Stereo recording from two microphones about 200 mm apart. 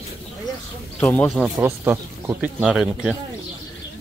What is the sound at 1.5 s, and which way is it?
Speech, 10° right (ahead or behind).